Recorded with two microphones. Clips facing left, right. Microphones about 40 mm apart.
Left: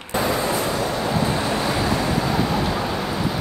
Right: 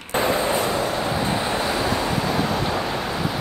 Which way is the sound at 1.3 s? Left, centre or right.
Right.